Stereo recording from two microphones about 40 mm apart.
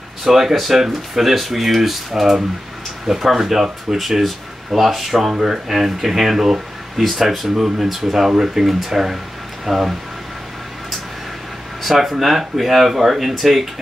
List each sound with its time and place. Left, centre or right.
0.2 s speech: centre
8.6 s speech: centre
11.8 s speech: centre